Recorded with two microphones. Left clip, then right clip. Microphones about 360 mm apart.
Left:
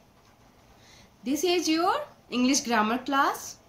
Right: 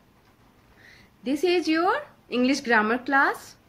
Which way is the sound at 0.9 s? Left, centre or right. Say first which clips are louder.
Right 2 dB; centre.